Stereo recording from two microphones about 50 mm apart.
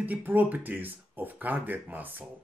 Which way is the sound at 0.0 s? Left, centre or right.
Right.